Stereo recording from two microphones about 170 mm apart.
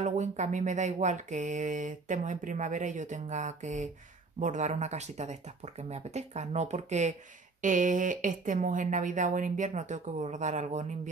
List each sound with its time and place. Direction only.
0.0 s music: 45° right (ahead or behind)
4.4 s speech: 45° right (ahead or behind)
7.6 s music: 50° right (ahead or behind)